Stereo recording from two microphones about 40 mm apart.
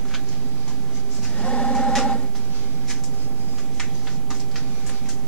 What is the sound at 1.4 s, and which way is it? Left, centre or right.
Printer, left.